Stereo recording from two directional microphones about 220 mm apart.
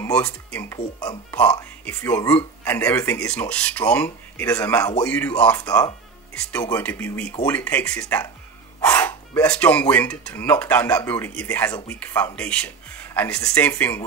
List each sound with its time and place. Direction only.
0.0 s speech: 5° left (ahead or behind)
1.3 s speech: 5° left (ahead or behind)